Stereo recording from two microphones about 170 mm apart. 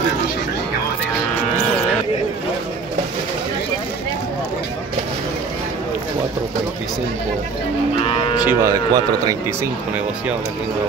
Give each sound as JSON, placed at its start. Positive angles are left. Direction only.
{"t": 8.0, "sound": "moo", "side_deg": 35}
{"t": 8.4, "sound": "a man's voice", "side_deg": -10}